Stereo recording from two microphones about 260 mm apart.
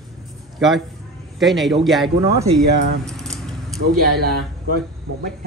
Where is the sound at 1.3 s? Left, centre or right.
Centre.